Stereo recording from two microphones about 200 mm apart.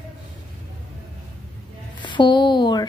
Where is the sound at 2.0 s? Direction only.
25° left (ahead or behind).